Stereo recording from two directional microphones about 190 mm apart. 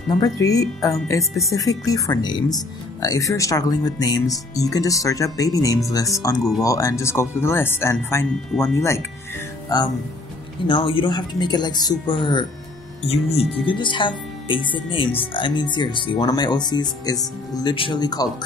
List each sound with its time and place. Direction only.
0.2 s speech: 20° left (ahead or behind)
10.7 s speech: 25° left (ahead or behind)